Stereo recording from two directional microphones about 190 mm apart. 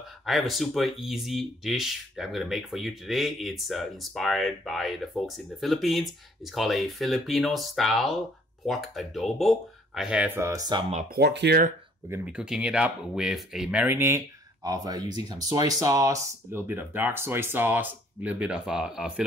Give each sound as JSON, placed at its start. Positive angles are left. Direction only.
{"t": 0.2, "sound": "speech", "side_deg": 0}
{"t": 11.1, "sound": "speech", "side_deg": -60}
{"t": 12.1, "sound": "speech", "side_deg": -5}